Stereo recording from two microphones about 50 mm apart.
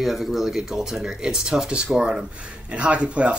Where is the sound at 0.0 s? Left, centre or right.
Centre.